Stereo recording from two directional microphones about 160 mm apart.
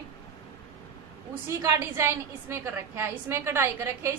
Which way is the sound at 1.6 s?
15° right (ahead or behind).